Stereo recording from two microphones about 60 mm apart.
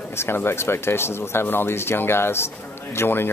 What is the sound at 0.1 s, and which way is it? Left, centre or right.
Speech, left.